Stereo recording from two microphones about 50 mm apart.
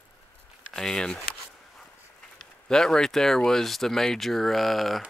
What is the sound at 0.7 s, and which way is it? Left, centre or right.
Speech, centre.